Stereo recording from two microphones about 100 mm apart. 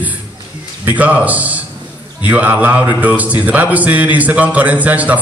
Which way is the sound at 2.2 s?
15° right (ahead or behind).